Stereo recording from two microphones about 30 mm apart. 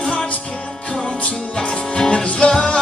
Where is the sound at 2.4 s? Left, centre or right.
Left.